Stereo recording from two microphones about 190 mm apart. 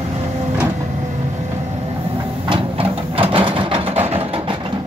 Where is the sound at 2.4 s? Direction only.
25° right (ahead or behind).